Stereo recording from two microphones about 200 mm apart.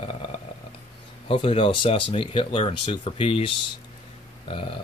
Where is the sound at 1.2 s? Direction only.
30° left (ahead or behind).